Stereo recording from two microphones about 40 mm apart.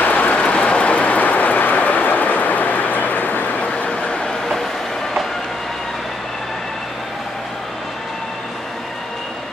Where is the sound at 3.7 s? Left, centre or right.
Left.